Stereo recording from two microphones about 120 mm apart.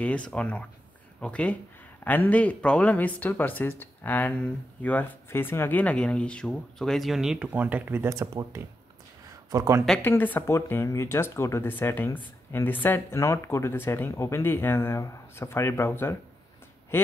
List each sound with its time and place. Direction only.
0.0 s speech: 10° left (ahead or behind); by 9.8 s 25° right (ahead or behind)
10.0 s speech: 15° left (ahead or behind)
16.9 s quack: 15° left (ahead or behind)